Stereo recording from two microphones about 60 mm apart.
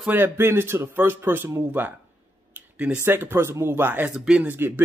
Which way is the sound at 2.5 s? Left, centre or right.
Right.